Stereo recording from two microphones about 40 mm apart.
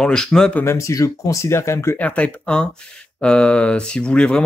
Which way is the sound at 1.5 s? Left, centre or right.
Left.